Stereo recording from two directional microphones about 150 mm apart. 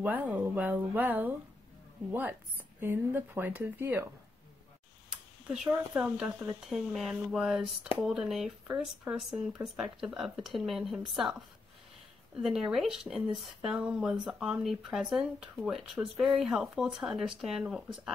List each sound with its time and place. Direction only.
0.0 s speech: 10° right (ahead or behind)
5.1 s a sound: 5° right (ahead or behind)
5.7 s speech: 15° right (ahead or behind)
6.0 s speech: 5° right (ahead or behind)
12.4 s speech: 5° right (ahead or behind)